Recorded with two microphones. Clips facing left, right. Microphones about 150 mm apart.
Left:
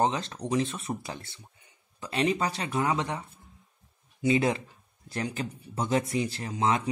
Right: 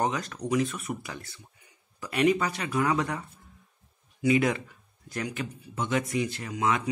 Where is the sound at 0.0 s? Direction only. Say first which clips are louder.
Left 2 dB; 25° left (ahead or behind).